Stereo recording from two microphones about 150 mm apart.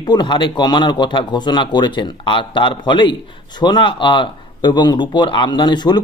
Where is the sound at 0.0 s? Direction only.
30° left (ahead or behind).